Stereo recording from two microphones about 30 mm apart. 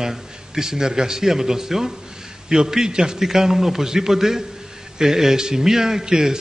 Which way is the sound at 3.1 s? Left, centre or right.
Centre.